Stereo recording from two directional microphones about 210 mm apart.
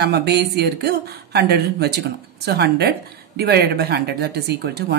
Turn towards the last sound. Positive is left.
turn(degrees=-50)  # may be behind; listen again after turning